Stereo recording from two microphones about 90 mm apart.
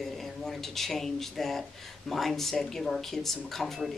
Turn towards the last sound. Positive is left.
turn(degrees=5)  # may be behind; listen again after turning